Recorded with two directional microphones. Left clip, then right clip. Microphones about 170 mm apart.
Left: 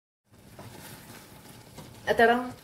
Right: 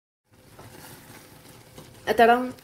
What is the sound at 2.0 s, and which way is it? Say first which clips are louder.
Speech: right 4 dB; 85° right.